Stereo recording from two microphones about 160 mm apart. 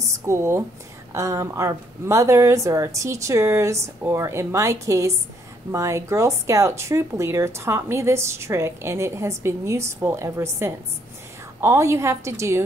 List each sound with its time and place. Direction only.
0.1 s a woman's voice: 20° right (ahead or behind)